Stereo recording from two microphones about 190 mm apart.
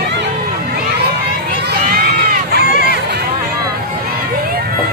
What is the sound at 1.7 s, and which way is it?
Crowd, 55° right (ahead or behind).